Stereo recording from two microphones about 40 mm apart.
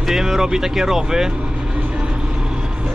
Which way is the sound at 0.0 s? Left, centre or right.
Centre.